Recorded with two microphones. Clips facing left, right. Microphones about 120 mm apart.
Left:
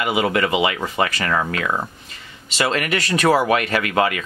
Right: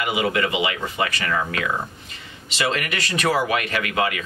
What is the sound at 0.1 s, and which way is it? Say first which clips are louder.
Speech: left 3 dB; 40° left (ahead or behind).